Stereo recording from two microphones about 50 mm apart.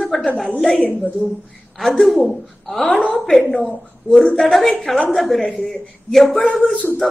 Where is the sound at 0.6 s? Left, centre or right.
Centre.